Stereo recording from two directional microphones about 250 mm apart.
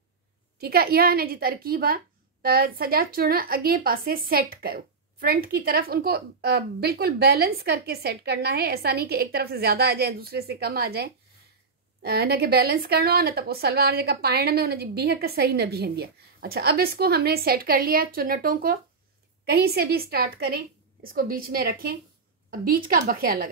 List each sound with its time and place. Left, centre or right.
0.6 s a woman's voice: right